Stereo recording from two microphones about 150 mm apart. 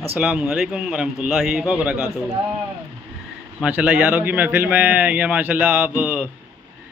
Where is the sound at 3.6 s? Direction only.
10° right (ahead or behind).